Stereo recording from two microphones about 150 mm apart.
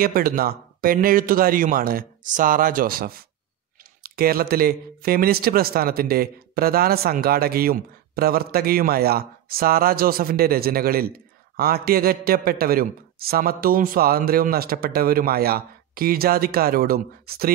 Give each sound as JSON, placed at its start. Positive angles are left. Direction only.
{"t": 0.0, "sound": "speech", "side_deg": -75}